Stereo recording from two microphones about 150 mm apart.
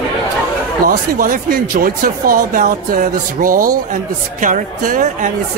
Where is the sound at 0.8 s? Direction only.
70° right (ahead or behind).